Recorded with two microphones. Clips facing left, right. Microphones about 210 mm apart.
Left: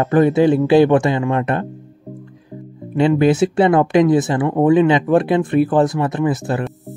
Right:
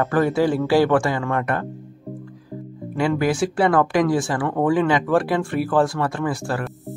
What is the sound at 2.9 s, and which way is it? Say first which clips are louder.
Speech: left 7 dB; 25° left (ahead or behind).